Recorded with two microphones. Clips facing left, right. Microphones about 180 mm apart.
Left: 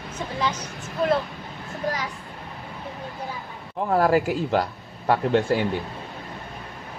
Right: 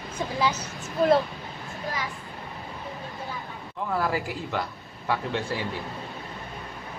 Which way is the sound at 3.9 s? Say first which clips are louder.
Left 8 dB; 50° left (ahead or behind).